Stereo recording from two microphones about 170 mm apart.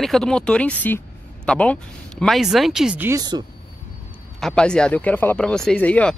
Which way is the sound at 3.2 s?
25° right (ahead or behind).